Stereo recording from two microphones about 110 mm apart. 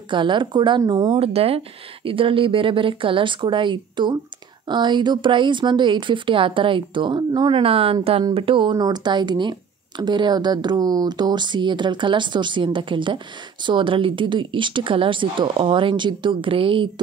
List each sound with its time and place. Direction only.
0.1 s speech: 45° right (ahead or behind)
1.2 s speech: 60° right (ahead or behind)
8.7 s speech: 35° right (ahead or behind); by 16.9 s 55° right (ahead or behind)